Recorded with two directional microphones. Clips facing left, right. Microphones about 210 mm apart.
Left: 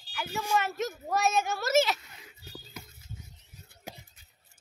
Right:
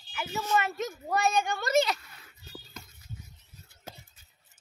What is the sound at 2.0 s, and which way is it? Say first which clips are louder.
Music: left 3 dB; 15° left (ahead or behind).